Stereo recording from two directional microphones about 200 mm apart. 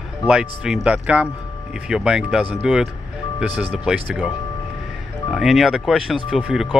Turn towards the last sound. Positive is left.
turn(degrees=-5)  # may be behind; listen again after turning